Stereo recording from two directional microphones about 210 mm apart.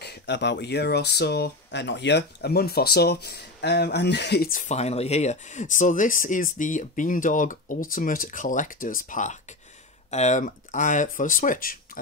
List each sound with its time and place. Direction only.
0.0 s speech: 55° left (ahead or behind)